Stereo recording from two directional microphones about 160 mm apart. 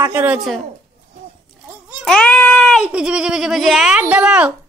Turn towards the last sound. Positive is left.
turn(degrees=-5)  # may be behind; listen again after turning